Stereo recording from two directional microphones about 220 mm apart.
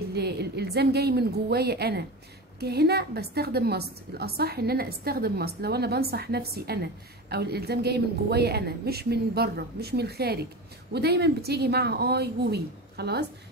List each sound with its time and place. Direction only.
0.1 s a woman's voice: 45° right (ahead or behind)